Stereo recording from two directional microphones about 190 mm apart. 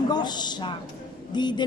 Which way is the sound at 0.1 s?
20° left (ahead or behind).